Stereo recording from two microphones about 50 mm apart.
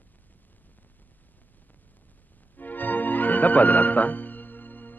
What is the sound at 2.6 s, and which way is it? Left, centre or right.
Music, left.